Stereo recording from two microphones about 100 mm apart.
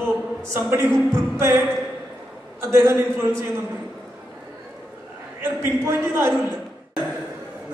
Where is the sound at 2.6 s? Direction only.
30° right (ahead or behind).